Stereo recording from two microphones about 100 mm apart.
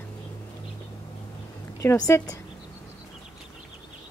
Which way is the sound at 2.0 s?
35° left (ahead or behind).